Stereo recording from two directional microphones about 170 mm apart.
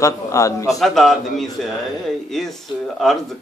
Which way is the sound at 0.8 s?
Centre (ahead or behind).